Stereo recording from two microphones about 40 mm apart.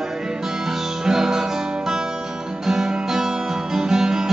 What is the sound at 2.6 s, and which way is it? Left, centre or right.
Guitar, centre.